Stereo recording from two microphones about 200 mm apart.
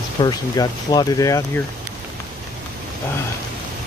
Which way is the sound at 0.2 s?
20° left (ahead or behind).